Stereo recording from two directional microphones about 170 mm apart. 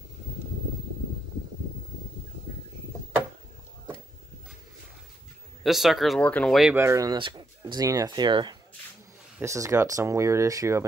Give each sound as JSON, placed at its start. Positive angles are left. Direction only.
{"t": 5.6, "sound": "speech", "side_deg": 0}
{"t": 6.7, "sound": "speech", "side_deg": -15}
{"t": 9.4, "sound": "speech", "side_deg": -15}